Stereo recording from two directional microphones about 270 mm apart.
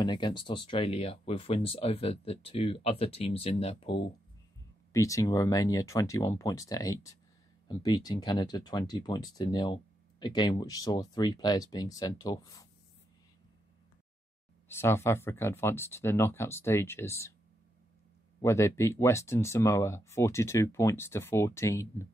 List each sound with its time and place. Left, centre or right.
0.0 s speech: centre
14.7 s speech: centre
18.4 s speech: centre